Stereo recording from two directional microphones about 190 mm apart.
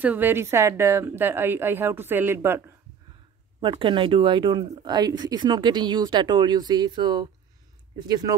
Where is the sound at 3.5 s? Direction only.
25° right (ahead or behind).